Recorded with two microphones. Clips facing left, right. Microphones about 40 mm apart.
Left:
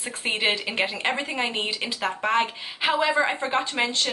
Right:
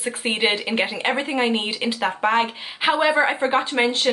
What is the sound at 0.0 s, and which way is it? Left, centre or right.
A woman's voice, centre.